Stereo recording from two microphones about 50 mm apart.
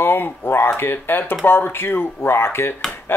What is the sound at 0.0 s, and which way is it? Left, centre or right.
Speech, left.